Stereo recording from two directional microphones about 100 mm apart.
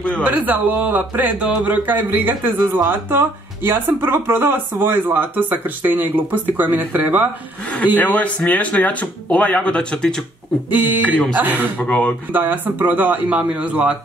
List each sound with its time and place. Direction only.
0.2 s speech: 15° right (ahead or behind)
7.7 s speech: 15° left (ahead or behind)
10.7 s speech: 15° right (ahead or behind)
11.8 s speech: 10° left (ahead or behind)
12.3 s speech: 20° right (ahead or behind)